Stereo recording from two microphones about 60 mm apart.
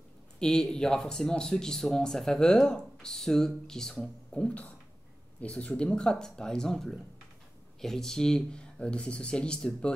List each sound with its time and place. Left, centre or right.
0.4 s speech: centre